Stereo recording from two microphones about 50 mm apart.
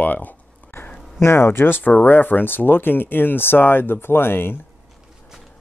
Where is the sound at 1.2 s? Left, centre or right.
Left.